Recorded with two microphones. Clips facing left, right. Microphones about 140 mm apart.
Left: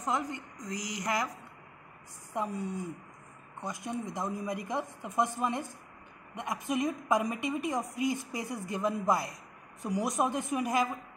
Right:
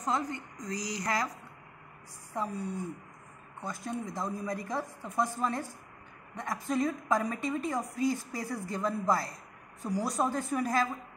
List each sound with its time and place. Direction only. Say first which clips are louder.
0.0 s a woman's voice: right 1 dB; 15° left (ahead or behind)
2.3 s a woman's voice: left 1 dB; 20° left (ahead or behind)
3.6 s a woman's voice: even; 15° left (ahead or behind)